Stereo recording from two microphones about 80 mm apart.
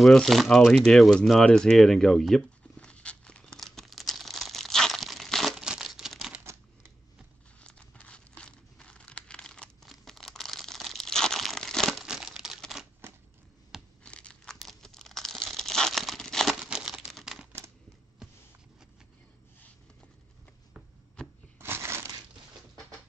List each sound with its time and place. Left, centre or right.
0.0 s a sound: centre
5.6 s crumpling: centre
7.6 s crumpling: centre
12.0 s crumpling: centre
14.0 s tearing: centre
16.6 s crumpling: centre
17.2 s typewriter: centre
21.2 s shuffling cards: centre
21.5 s crushing: right